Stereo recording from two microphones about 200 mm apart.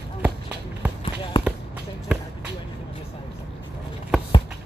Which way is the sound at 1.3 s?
25° left (ahead or behind).